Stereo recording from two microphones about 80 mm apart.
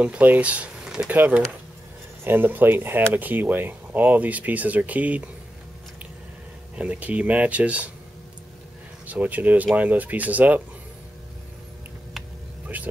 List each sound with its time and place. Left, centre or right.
0.0 s speech: centre
0.8 s a sound: centre
1.1 s speech: right
6.8 s speech: centre
9.0 s speech: centre